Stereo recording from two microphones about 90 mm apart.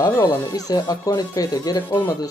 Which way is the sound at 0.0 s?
45° left (ahead or behind).